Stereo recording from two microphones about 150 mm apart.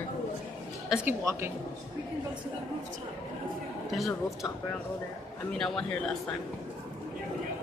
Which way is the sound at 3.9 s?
Centre (ahead or behind).